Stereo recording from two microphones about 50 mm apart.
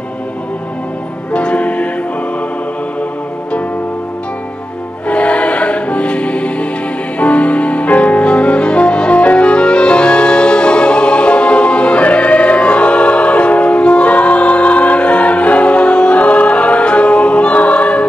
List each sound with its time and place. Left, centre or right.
1.3 s music: left
5.0 s music: left